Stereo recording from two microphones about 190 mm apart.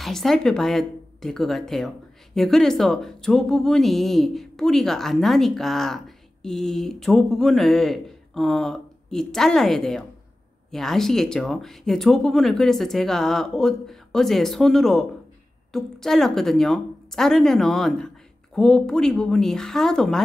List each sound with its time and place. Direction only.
0.0 s speech: centre (ahead or behind)